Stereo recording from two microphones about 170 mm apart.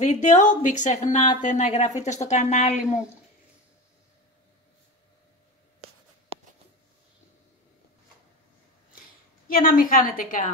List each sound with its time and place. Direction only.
0.0 s speech: 45° left (ahead or behind)
9.5 s a woman's voice: 55° left (ahead or behind)